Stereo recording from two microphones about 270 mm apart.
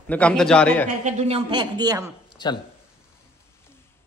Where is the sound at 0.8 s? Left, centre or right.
Right.